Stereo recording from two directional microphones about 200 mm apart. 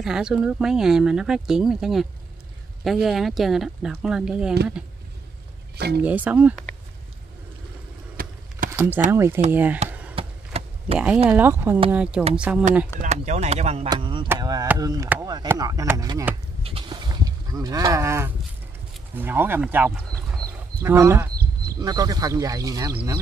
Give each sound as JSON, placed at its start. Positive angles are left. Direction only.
{"t": 0.0, "sound": "speech", "side_deg": 0}
{"t": 5.8, "sound": "speech", "side_deg": -55}
{"t": 6.0, "sound": "speech", "side_deg": -5}
{"t": 8.2, "sound": "a sound", "side_deg": -45}
{"t": 8.7, "sound": "speech", "side_deg": -10}
{"t": 10.1, "sound": "vehicle", "side_deg": -30}
{"t": 11.2, "sound": "speech", "side_deg": -10}
{"t": 13.0, "sound": "speech", "side_deg": -35}
{"t": 16.6, "sound": "a sound", "side_deg": -25}
{"t": 19.1, "sound": "speech", "side_deg": -10}